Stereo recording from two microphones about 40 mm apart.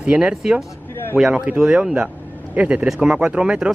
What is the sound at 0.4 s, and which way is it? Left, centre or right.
Speech, centre.